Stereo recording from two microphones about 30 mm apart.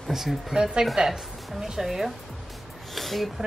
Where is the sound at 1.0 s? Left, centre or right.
Right.